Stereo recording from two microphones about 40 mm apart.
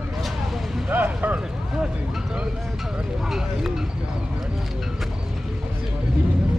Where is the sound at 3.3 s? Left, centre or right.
Centre.